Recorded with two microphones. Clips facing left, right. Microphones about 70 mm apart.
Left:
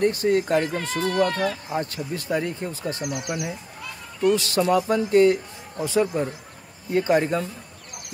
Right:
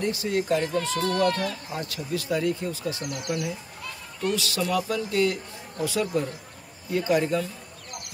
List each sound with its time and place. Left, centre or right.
0.0 s speech: left
0.9 s a man's voice: centre
1.7 s speech: left
3.0 s speech: centre
4.4 s a man's voice: left